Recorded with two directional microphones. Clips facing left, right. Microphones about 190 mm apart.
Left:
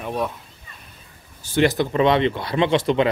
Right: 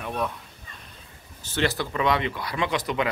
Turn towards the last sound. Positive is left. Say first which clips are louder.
# left 8 dB
turn(degrees=25)  # may be behind; listen again after turning